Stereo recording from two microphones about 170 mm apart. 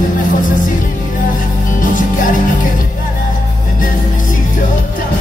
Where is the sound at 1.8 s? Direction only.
50° left (ahead or behind).